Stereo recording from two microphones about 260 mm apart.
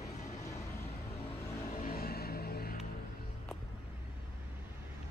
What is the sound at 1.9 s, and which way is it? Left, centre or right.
Music, left.